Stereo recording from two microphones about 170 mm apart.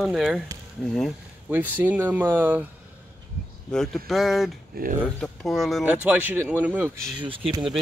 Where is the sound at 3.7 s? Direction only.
Centre (ahead or behind).